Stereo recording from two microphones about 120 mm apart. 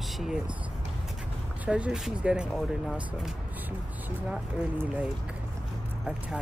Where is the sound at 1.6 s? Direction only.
10° right (ahead or behind).